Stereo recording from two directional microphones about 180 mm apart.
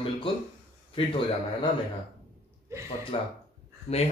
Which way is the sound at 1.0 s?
30° left (ahead or behind).